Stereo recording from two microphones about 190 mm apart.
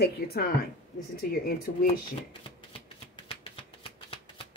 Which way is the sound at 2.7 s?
30° left (ahead or behind).